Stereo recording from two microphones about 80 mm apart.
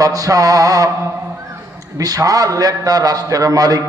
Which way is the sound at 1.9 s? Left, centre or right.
Right.